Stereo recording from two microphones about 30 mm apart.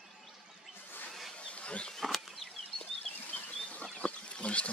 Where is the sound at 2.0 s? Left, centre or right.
Centre.